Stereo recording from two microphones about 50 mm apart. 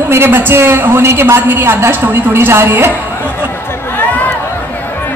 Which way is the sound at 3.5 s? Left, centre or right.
Left.